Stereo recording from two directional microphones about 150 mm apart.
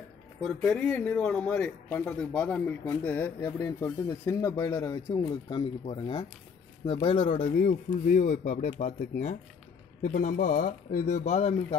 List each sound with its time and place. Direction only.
0.7 s a man's voice: 5° left (ahead or behind); by 7.5 s 35° left (ahead or behind)
7.6 s speech: 55° left (ahead or behind)